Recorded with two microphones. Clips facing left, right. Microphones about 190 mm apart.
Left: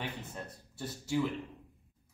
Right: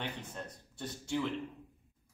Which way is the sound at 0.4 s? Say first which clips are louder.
Left 1 dB; 5° left (ahead or behind).